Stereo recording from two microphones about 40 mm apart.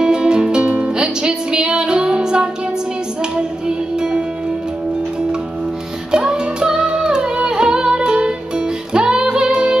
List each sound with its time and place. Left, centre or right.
0.0 s music: right
6.1 s music: right